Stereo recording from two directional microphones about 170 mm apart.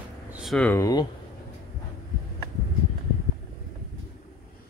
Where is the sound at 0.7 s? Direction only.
20° left (ahead or behind).